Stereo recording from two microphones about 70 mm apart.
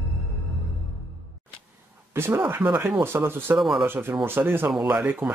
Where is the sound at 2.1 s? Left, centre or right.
Right.